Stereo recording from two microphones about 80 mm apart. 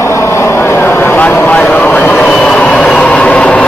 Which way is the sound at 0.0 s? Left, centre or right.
Left.